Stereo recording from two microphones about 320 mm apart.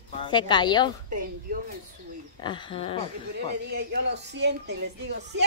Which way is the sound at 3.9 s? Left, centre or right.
Right.